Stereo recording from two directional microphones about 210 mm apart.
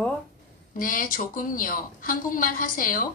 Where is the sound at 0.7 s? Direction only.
40° left (ahead or behind).